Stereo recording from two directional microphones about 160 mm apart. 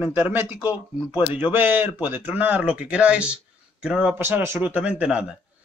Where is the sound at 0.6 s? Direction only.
30° left (ahead or behind).